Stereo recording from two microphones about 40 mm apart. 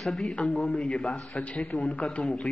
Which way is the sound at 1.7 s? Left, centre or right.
Left.